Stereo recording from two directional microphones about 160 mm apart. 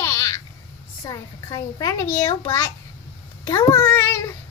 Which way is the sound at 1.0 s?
20° left (ahead or behind).